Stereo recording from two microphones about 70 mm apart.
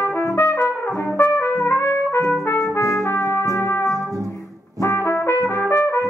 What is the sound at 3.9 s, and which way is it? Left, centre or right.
Music, right.